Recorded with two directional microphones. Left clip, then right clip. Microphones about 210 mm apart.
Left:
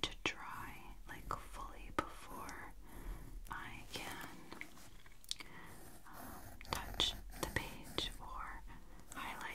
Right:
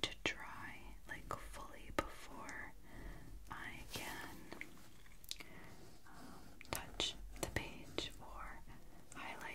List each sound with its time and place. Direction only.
0.0 s whispering: 20° left (ahead or behind)
5.3 s chewing: 35° left (ahead or behind)
6.6 s whispering: 40° left (ahead or behind)